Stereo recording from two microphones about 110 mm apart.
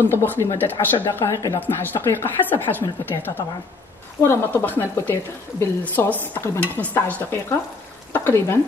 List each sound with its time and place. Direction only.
0.0 s speech: 20° left (ahead or behind)
1.6 s stir: 20° left (ahead or behind)
4.2 s speech: 25° left (ahead or behind)
6.6 s stir: 15° left (ahead or behind)
8.1 s speech: 20° left (ahead or behind)